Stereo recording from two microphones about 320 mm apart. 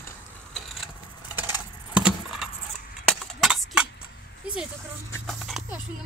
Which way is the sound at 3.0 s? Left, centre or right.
Centre.